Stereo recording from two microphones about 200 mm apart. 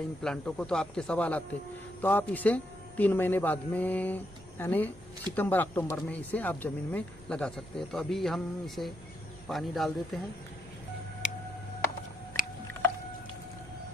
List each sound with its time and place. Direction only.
0.2 s a man's voice: 5° left (ahead or behind)
12.4 s boat: 40° left (ahead or behind)